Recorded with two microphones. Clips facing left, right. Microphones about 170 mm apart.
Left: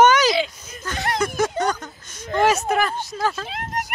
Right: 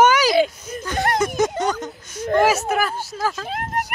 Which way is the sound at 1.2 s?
20° right (ahead or behind).